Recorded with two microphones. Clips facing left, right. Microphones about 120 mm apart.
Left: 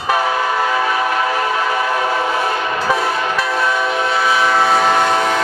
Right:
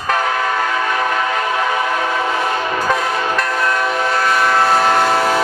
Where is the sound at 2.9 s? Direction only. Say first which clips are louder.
Even; 5° left (ahead or behind).